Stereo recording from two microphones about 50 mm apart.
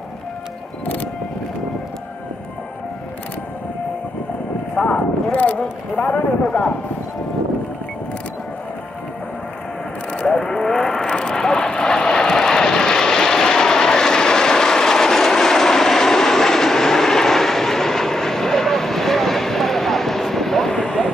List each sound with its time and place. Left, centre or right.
4.7 s a sound: left
6.4 s speech: centre
10.1 s vehicle: centre